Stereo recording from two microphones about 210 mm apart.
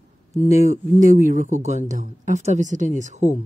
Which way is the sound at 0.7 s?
40° right (ahead or behind).